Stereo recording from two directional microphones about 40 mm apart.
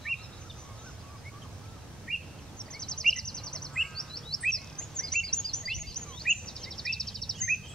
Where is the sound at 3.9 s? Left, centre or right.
Centre.